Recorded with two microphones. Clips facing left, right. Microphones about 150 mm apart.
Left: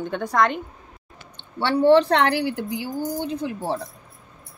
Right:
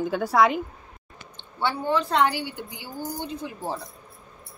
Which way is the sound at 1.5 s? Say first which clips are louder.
Left 9 dB; 75° left (ahead or behind).